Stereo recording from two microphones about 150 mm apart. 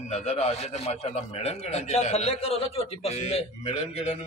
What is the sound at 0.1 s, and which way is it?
A man's voice, 45° left (ahead or behind).